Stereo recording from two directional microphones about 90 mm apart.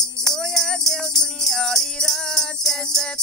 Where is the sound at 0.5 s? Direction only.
5° left (ahead or behind).